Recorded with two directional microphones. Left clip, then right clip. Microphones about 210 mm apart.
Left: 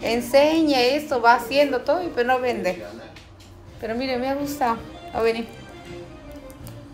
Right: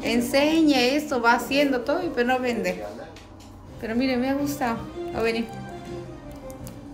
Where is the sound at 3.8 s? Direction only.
5° right (ahead or behind).